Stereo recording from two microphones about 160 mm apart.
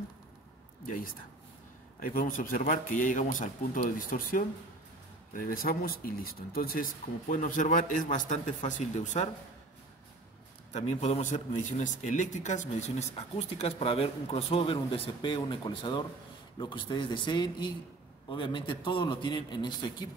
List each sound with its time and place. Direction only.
0.8 s speech: 60° left (ahead or behind)
10.7 s a man's voice: 45° left (ahead or behind); by 20.1 s 25° left (ahead or behind)